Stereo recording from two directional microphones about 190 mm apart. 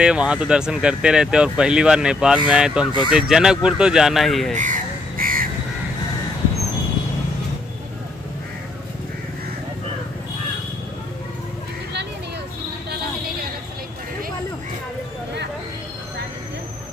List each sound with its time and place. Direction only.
0.0 s speech: 5° right (ahead or behind)
4.6 s crow: 45° right (ahead or behind)